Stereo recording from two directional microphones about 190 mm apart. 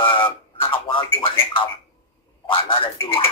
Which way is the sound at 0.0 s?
25° left (ahead or behind).